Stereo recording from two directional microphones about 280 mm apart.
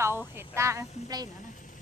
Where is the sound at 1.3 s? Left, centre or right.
Left.